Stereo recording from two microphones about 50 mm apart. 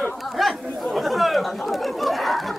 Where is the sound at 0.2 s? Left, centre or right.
Centre.